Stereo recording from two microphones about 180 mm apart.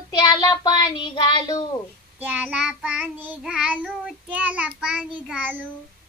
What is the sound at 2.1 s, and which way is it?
Child singing, 10° right (ahead or behind).